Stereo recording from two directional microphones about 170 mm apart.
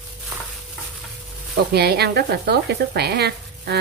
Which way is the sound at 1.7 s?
70° right (ahead or behind).